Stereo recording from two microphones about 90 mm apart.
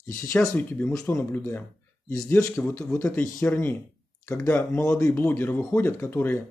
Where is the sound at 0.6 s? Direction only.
20° left (ahead or behind).